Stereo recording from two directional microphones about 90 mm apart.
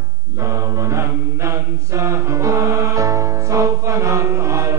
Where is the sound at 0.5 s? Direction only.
35° right (ahead or behind).